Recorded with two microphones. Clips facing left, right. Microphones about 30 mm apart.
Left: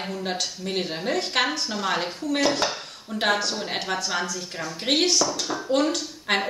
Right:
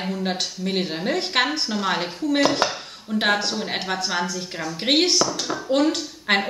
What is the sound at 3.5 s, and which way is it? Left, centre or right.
Speech, centre.